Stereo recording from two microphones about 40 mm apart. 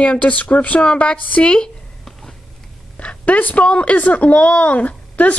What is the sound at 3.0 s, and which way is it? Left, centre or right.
Speech, left.